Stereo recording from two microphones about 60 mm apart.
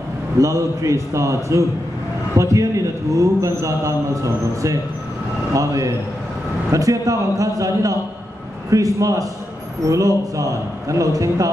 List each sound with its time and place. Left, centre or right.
0.4 s a man's voice: right